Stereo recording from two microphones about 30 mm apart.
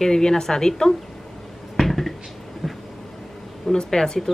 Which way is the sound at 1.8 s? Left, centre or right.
Centre.